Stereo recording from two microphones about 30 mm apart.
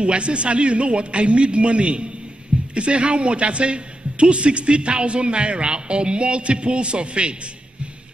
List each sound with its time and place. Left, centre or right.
0.0 s a man's voice: right